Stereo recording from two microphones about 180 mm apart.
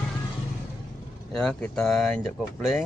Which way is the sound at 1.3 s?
5° left (ahead or behind).